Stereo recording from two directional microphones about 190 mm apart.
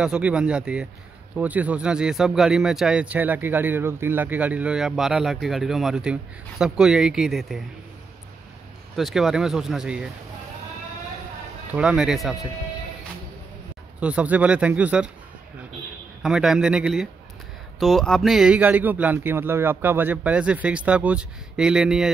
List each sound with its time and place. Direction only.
0.0 s a man's voice: 5° right (ahead or behind)
8.9 s a man's voice: centre (ahead or behind)
11.7 s a man's voice: 5° right (ahead or behind)
13.9 s speech: 5° right (ahead or behind)
16.2 s a man's voice: centre (ahead or behind)